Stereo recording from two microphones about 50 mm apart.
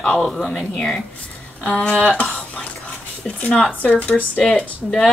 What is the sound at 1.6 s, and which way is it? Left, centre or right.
Speech, left.